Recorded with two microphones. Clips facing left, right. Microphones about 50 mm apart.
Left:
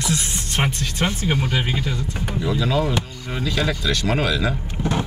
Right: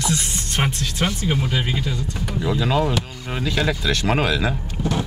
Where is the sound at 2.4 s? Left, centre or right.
Centre.